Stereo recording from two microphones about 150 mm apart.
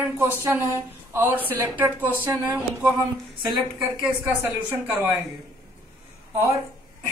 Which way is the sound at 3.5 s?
10° right (ahead or behind).